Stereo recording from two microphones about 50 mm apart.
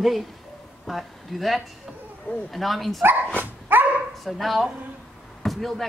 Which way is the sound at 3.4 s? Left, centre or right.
Right.